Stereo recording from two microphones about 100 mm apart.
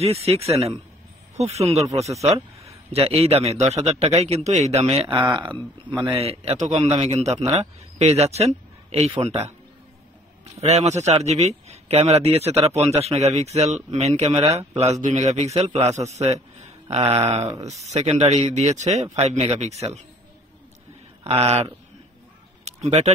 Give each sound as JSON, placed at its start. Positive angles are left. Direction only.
{"t": 0.0, "sound": "a man's voice", "side_deg": -90}
{"t": 2.9, "sound": "a man's voice", "side_deg": -85}
{"t": 5.2, "sound": "speech", "side_deg": -55}
{"t": 6.1, "sound": "a man's voice", "side_deg": -90}
{"t": 21.2, "sound": "a man's voice", "side_deg": -90}